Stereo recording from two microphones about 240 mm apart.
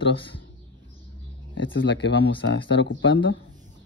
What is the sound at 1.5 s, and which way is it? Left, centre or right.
Speech, left.